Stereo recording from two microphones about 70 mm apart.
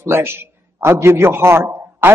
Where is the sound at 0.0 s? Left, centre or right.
Right.